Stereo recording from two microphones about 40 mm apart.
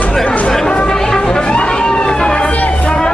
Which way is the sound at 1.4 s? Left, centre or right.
Left.